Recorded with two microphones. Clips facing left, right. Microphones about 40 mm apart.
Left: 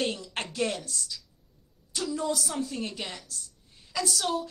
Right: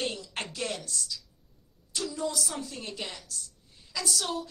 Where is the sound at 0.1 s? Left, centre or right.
Left.